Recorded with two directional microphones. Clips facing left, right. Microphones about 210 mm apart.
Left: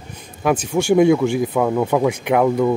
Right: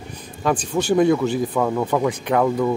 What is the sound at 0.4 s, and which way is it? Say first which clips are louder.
Speech: left 3 dB; 10° left (ahead or behind).